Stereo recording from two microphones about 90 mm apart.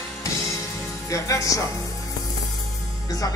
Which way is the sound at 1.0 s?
35° left (ahead or behind).